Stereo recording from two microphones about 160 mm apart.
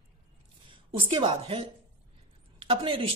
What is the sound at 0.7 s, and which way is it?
A woman's voice, 30° right (ahead or behind).